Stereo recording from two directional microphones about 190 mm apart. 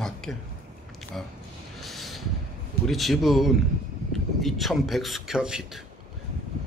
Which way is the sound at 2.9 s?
Centre (ahead or behind).